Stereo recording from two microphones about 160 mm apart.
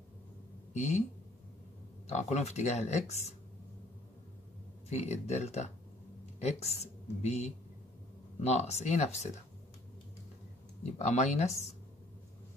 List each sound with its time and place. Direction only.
0.7 s speech: 45° left (ahead or behind)
2.0 s speech: 45° left (ahead or behind)
4.8 s speech: 45° left (ahead or behind)
11.0 s speech: 45° left (ahead or behind)